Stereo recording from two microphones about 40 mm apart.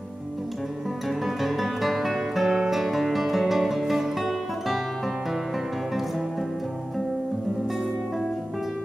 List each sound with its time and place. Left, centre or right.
1.0 s music: centre